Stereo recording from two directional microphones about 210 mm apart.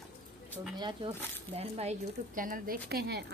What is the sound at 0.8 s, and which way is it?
Speech, 20° right (ahead or behind).